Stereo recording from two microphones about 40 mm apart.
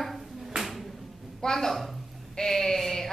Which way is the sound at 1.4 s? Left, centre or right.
Centre.